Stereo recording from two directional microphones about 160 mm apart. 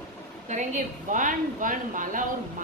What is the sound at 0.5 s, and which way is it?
A woman's voice, 50° right (ahead or behind).